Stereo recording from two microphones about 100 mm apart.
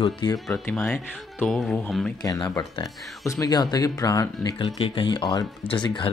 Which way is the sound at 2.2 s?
40° left (ahead or behind).